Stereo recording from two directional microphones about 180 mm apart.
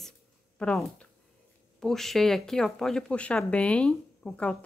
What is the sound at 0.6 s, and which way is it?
Speech, 5° left (ahead or behind).